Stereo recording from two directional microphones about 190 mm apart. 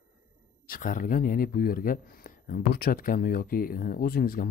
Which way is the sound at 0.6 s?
45° left (ahead or behind).